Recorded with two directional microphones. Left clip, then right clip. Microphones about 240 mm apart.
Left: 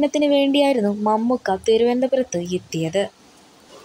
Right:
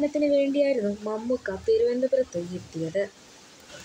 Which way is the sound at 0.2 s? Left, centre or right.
Left.